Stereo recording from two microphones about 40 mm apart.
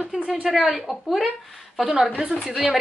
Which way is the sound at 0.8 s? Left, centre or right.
Centre.